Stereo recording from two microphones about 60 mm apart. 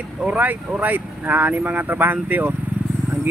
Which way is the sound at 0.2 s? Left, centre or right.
Right.